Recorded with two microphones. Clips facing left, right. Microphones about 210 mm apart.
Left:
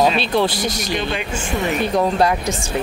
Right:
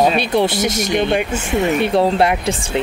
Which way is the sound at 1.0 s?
55° right (ahead or behind).